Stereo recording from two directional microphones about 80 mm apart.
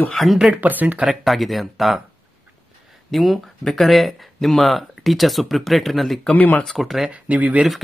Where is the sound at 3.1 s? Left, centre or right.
Centre.